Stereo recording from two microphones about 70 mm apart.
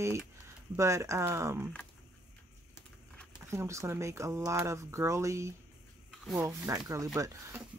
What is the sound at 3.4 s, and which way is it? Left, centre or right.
Speech, right.